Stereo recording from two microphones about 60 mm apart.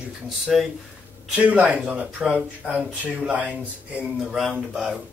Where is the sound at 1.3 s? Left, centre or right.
Centre.